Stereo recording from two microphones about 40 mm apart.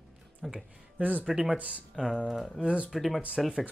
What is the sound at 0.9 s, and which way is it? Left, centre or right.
Speech, right.